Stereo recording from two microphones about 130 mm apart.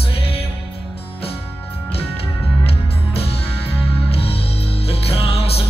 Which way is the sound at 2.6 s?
50° left (ahead or behind).